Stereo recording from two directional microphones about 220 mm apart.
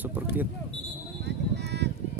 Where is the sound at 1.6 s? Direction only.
50° right (ahead or behind).